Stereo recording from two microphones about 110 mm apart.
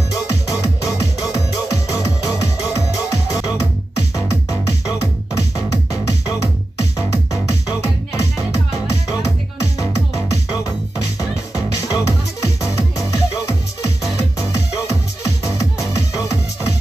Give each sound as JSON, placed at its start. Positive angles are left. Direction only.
{"t": 0.1, "sound": "music", "side_deg": 30}